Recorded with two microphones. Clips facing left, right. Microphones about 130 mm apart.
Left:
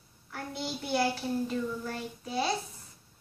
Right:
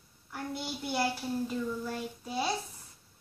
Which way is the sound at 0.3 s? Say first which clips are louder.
Left 1 dB; 5° right (ahead or behind).